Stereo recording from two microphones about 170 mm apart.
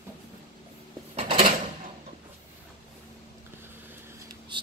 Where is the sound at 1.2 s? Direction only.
45° right (ahead or behind).